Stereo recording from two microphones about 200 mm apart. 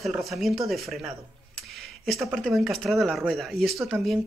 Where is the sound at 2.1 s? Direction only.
15° right (ahead or behind).